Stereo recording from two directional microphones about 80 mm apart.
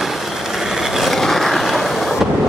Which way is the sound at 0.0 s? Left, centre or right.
Centre.